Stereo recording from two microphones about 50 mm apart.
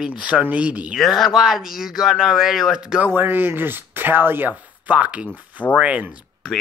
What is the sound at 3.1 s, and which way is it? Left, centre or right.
Speech, right.